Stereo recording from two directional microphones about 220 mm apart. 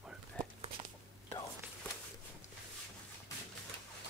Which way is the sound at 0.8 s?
25° right (ahead or behind).